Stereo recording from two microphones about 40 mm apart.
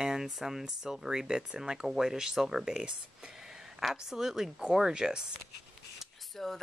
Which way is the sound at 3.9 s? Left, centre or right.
Centre.